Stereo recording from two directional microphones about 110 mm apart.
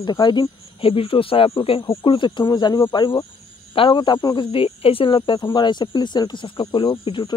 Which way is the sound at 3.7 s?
50° left (ahead or behind).